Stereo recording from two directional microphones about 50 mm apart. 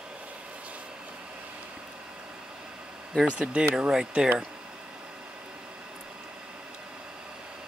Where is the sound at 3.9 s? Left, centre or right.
Centre.